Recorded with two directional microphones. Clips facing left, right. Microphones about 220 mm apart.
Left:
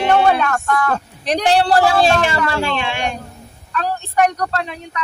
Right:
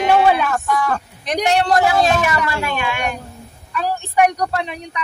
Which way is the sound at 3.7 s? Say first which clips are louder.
Even; 10° right (ahead or behind).